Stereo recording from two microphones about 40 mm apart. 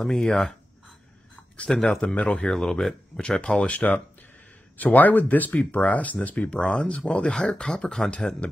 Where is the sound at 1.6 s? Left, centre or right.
Left.